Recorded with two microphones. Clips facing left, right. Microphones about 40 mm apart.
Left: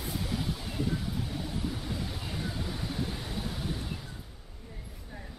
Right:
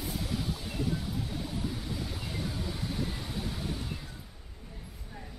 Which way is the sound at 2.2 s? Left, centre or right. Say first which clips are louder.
Even; centre.